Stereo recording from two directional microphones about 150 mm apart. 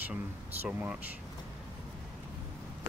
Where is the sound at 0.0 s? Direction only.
10° right (ahead or behind).